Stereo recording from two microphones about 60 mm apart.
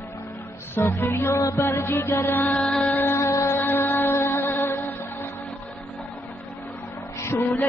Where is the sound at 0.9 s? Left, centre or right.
Left.